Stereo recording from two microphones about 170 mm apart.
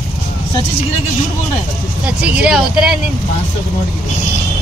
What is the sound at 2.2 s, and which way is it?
Speech, 5° right (ahead or behind).